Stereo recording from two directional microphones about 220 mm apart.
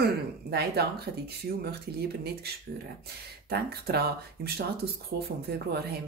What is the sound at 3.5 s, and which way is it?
Speech, 45° right (ahead or behind).